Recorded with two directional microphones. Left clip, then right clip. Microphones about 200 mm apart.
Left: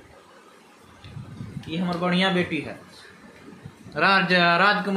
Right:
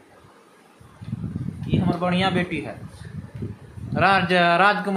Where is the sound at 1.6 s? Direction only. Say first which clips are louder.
Right 2 dB; 20° right (ahead or behind).